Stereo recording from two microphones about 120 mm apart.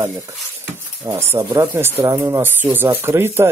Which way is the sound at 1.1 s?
25° right (ahead or behind).